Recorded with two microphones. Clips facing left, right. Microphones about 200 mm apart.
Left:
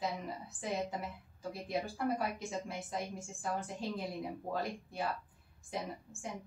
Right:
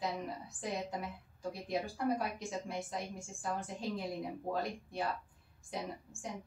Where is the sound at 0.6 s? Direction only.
Centre (ahead or behind).